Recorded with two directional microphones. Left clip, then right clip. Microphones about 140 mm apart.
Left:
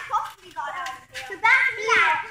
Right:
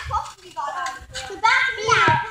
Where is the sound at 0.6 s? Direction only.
30° left (ahead or behind).